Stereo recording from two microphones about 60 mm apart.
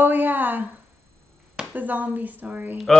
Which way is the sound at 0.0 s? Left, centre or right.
Right.